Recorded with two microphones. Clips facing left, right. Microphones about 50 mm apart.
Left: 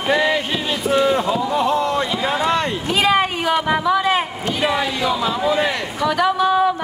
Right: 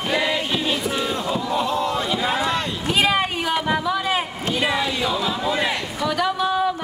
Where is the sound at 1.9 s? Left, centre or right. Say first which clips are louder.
Left 2 dB; centre.